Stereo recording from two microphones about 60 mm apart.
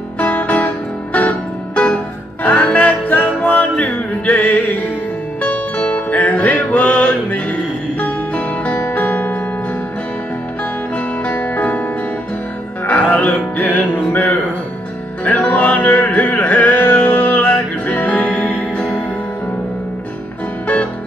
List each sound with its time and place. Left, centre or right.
0.2 s music: left
2.4 s music: left
11.2 s music: left
12.8 s music: left
20.6 s music: left